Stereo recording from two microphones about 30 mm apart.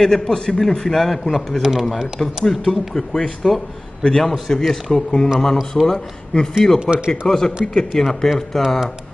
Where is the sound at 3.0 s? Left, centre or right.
Centre.